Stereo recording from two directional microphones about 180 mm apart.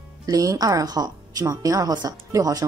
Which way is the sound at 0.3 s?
20° right (ahead or behind).